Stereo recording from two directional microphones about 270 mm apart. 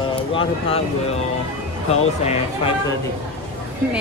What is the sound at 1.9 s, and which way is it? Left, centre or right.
Speech, left.